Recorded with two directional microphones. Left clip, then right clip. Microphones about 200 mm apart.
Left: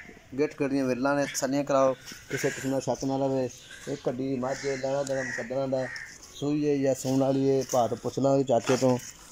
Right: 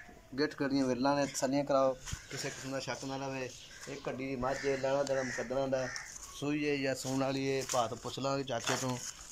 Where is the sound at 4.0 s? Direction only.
25° left (ahead or behind).